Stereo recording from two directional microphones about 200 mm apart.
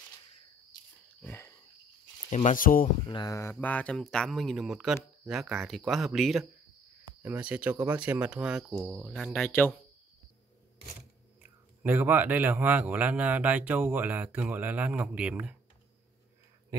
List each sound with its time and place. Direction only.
1.2 s wild animals: 10° left (ahead or behind)
2.2 s speech: 35° left (ahead or behind)
3.1 s mantra: 20° left (ahead or behind)
3.5 s speech: 5° left (ahead or behind)
11.8 s speech: 10° right (ahead or behind)